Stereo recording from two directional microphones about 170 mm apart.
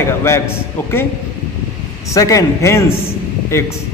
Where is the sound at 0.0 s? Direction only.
15° left (ahead or behind).